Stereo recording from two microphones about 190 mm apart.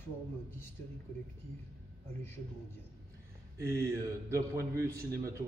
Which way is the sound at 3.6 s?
15° right (ahead or behind).